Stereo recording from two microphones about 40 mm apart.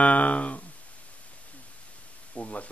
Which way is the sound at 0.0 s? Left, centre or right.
Left.